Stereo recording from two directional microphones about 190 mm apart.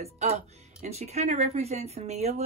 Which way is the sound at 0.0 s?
35° right (ahead or behind).